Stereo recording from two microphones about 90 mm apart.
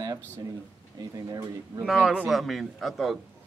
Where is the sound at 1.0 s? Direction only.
40° right (ahead or behind).